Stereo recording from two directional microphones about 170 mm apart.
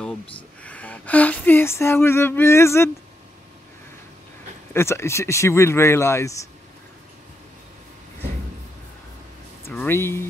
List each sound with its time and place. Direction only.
0.7 s speech: 10° left (ahead or behind)
4.7 s speech: 15° left (ahead or behind)
9.7 s speech: 15° left (ahead or behind)